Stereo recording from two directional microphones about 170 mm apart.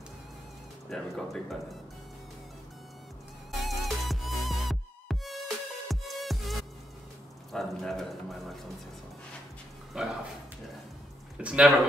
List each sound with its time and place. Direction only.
0.8 s speech: centre (ahead or behind)
3.6 s music: centre (ahead or behind)
7.5 s speech: centre (ahead or behind)
9.9 s speech: 5° right (ahead or behind)
11.3 s speech: 5° right (ahead or behind)